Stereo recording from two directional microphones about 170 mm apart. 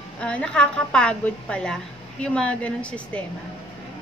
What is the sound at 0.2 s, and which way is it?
A woman's voice, 5° left (ahead or behind).